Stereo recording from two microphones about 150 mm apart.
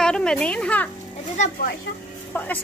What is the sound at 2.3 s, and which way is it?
Speech, 10° left (ahead or behind).